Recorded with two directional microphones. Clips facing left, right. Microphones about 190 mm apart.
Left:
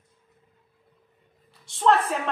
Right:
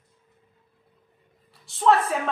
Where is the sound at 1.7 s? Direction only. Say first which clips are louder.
Right 3 dB; centre (ahead or behind).